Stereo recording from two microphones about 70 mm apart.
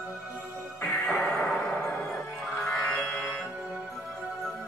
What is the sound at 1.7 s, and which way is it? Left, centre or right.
Music, left.